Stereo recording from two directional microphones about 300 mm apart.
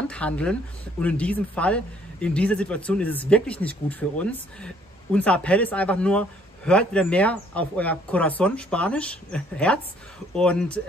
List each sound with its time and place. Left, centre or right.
0.1 s speech: centre